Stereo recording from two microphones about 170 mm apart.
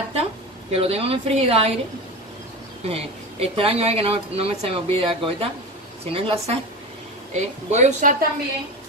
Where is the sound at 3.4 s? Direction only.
35° right (ahead or behind).